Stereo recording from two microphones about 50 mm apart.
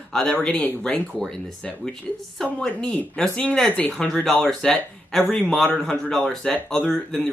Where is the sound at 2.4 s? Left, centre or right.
Centre.